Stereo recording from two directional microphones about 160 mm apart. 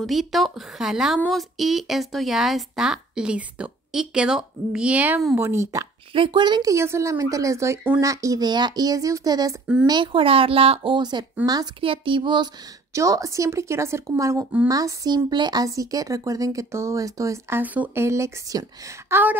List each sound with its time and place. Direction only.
0.0 s a woman's voice: centre (ahead or behind); by 5.9 s 20° right (ahead or behind)
6.1 s speech: 30° right (ahead or behind); by 19.3 s 15° right (ahead or behind)